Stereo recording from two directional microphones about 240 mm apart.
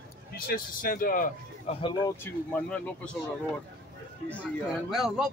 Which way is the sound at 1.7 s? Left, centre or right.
Left.